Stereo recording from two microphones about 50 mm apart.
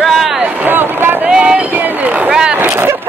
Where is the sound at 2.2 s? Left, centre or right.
Centre.